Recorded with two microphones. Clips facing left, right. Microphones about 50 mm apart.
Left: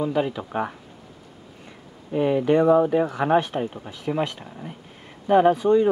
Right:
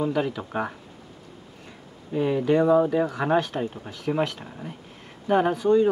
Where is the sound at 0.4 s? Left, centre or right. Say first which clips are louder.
Left 2 dB; centre.